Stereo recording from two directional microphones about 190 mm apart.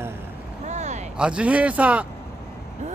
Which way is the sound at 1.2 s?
5° right (ahead or behind).